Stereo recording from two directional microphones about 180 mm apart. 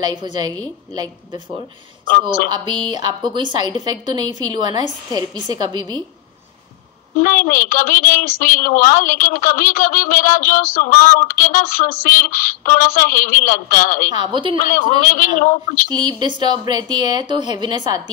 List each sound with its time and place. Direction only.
0.1 s a woman's voice: 25° right (ahead or behind)
2.5 s a woman's voice: 25° right (ahead or behind)
7.2 s a woman's voice: 50° left (ahead or behind)
14.1 s a woman's voice: 25° right (ahead or behind)
14.7 s a woman's voice: 50° left (ahead or behind)
15.9 s a woman's voice: 25° right (ahead or behind)